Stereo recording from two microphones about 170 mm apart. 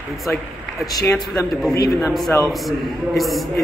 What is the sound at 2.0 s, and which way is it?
A man's voice, centre (ahead or behind).